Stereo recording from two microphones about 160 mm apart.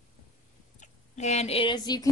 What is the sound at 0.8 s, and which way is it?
Speech, 45° left (ahead or behind).